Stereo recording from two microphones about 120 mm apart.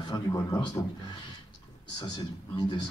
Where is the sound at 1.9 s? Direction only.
35° left (ahead or behind).